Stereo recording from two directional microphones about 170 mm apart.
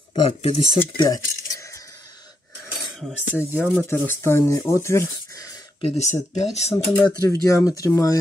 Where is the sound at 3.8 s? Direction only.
15° left (ahead or behind).